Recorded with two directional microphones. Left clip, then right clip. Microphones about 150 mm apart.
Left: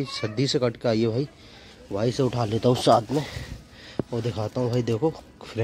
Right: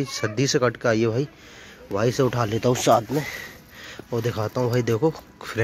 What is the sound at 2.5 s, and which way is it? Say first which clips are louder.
Speech: left 1 dB; 20° left (ahead or behind).